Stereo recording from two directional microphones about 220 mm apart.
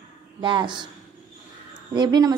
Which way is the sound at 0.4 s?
20° right (ahead or behind).